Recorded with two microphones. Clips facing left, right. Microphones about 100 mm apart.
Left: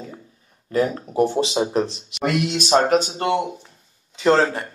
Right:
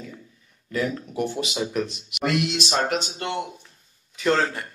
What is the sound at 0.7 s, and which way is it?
Speech, 35° left (ahead or behind).